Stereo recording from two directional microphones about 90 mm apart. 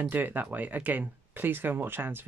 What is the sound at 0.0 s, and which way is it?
Speech, 20° right (ahead or behind).